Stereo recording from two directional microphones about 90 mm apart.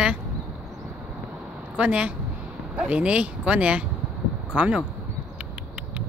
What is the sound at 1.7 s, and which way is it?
Speech, 15° right (ahead or behind).